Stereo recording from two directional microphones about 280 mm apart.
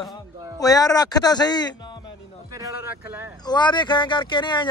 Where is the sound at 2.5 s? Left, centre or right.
Centre.